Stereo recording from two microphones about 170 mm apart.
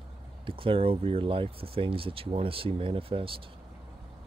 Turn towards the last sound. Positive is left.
turn(degrees=-30)  # may be behind; listen again after turning